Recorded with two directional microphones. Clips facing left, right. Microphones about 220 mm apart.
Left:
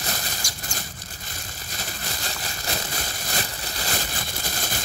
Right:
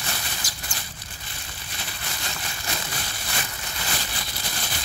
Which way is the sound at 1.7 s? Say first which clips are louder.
Left 3 dB; 40° left (ahead or behind).